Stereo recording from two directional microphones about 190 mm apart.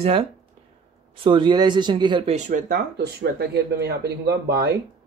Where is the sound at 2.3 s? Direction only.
40° right (ahead or behind); by 4.8 s 60° right (ahead or behind).